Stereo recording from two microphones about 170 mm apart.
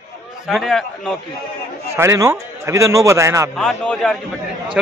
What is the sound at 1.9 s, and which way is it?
Speech, 15° right (ahead or behind).